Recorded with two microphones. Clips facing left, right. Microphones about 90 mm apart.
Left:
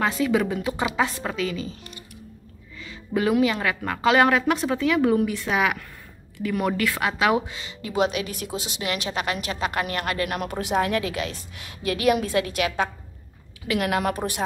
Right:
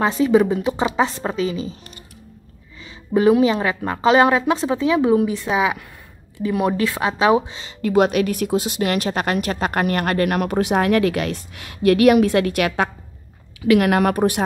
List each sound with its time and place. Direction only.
0.0 s a woman's voice: 25° right (ahead or behind)
2.8 s a woman's voice: 25° right (ahead or behind)
7.8 s speech: 55° right (ahead or behind)